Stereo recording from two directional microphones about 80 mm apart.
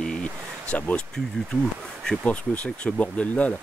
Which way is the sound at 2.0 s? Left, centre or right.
Centre.